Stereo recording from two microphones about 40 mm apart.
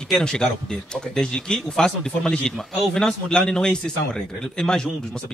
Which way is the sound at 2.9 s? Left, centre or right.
Centre.